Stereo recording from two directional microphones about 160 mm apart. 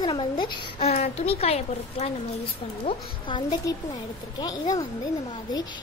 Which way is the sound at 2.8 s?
30° left (ahead or behind).